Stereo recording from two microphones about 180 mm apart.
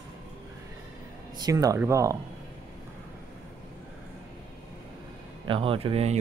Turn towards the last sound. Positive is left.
turn(degrees=-35)  # may be behind; listen again after turning